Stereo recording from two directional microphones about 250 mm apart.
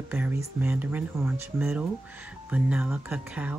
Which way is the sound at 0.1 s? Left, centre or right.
Centre.